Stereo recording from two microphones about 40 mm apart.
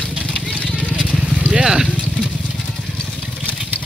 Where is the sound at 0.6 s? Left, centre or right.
Left.